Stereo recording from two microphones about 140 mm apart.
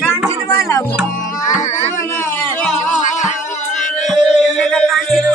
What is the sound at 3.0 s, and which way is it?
Music, 60° left (ahead or behind).